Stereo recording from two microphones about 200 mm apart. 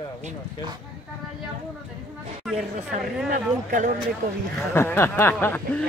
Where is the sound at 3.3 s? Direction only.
40° right (ahead or behind).